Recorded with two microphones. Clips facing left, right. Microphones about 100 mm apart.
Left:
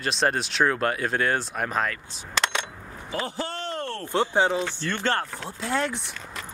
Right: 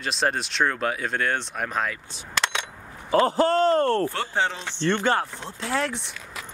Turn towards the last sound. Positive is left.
turn(degrees=0)  # may be behind; listen again after turning